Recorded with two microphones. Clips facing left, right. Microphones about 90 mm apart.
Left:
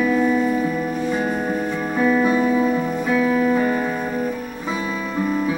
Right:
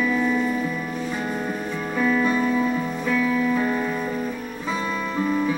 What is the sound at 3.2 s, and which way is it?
Music, 35° left (ahead or behind).